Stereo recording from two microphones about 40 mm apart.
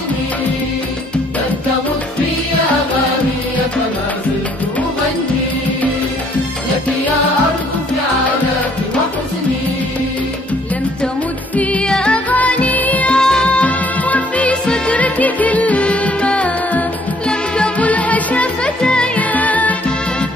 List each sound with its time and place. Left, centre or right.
11.8 s music: left
12.3 s music: left
13.1 s music: centre
13.6 s music: left
18.8 s music: left
19.1 s music: left